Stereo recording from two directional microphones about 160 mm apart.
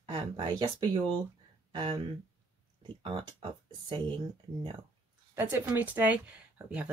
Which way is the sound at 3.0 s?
30° right (ahead or behind).